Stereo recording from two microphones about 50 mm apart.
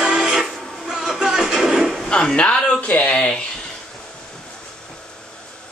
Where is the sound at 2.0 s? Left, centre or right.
Centre.